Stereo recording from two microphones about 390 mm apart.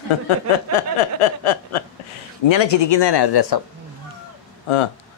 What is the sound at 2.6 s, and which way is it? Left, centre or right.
Speech, left.